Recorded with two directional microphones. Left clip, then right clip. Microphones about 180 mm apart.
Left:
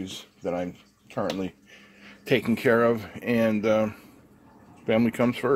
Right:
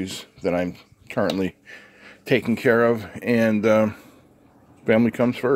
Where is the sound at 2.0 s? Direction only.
15° right (ahead or behind).